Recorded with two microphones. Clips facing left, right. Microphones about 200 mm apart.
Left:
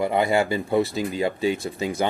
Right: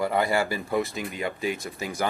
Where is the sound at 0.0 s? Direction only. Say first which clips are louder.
Left 3 dB; 20° left (ahead or behind).